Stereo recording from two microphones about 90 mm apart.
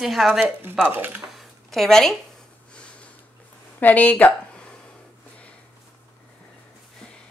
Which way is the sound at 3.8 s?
20° left (ahead or behind).